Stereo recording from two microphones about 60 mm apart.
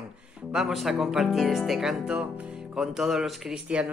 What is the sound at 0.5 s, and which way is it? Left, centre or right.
Speech, centre.